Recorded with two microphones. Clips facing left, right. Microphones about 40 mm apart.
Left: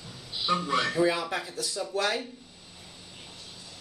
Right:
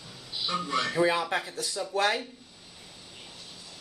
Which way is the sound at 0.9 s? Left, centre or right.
Right.